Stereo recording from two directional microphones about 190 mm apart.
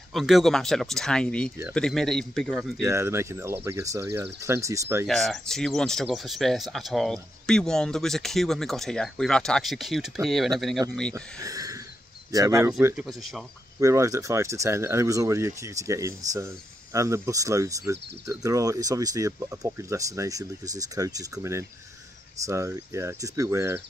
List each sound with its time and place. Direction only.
0.1 s speech: centre (ahead or behind)
2.8 s speech: 15° right (ahead or behind)
5.0 s speech: centre (ahead or behind)
11.1 s speech: 15° right (ahead or behind)
12.8 s speech: centre (ahead or behind)
13.7 s speech: 15° right (ahead or behind)